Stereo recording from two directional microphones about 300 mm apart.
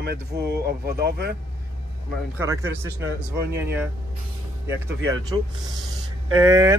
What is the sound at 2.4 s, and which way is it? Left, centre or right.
Speech, centre.